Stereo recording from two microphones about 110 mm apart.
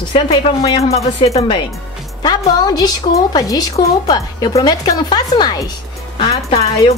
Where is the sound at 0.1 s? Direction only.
55° left (ahead or behind).